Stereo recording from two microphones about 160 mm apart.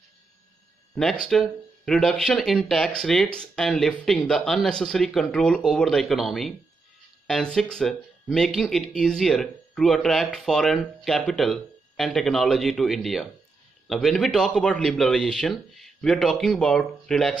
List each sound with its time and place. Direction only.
1.2 s speech: 5° left (ahead or behind)